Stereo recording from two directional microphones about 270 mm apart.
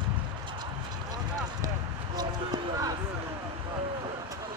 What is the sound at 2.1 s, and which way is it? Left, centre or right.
Basketball bounce, centre.